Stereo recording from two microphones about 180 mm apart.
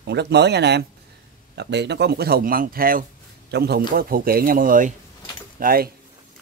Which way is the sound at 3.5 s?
65° right (ahead or behind).